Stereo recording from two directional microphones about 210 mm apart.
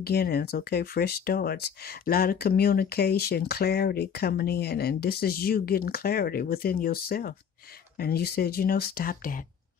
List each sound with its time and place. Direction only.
0.0 s speech: 50° left (ahead or behind)